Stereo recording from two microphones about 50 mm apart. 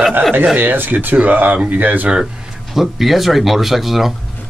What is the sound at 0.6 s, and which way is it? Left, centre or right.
Speech, right.